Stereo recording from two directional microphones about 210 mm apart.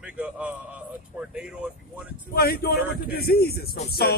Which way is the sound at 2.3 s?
45° left (ahead or behind).